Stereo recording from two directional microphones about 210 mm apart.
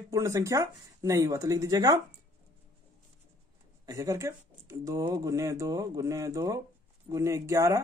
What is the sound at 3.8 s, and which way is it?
Speech, 15° right (ahead or behind).